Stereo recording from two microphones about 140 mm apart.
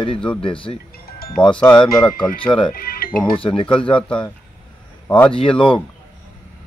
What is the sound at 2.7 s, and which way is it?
Music, 90° left.